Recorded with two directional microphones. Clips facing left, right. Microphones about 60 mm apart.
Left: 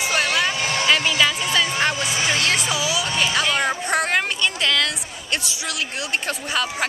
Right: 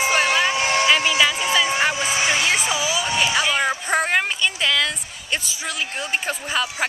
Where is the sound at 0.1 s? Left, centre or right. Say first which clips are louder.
Even; centre.